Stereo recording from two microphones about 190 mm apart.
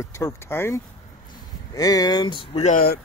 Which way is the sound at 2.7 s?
55° left (ahead or behind).